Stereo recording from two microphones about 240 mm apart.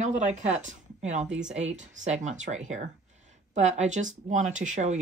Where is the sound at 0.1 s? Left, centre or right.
Right.